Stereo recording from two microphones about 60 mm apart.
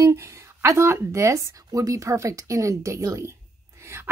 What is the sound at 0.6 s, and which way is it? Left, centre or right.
Speech, right.